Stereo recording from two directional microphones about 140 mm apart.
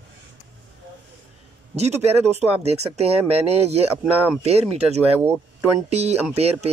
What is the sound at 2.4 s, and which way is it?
Speech, 50° right (ahead or behind).